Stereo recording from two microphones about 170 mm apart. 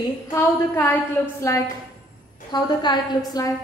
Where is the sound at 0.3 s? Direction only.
15° left (ahead or behind).